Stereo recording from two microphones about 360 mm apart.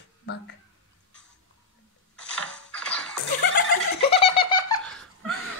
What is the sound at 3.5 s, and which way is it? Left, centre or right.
Giggle, centre.